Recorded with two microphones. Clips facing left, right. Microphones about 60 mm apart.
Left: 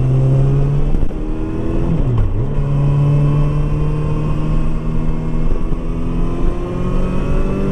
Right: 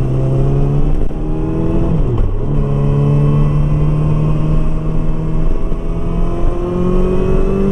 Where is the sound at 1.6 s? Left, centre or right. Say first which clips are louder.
Right 2 dB; centre.